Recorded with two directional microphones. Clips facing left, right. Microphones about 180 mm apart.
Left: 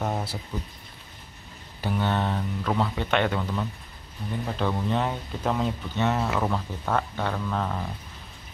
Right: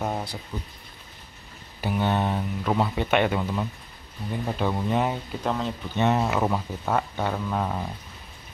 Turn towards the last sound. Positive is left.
turn(degrees=-15)  # may be behind; listen again after turning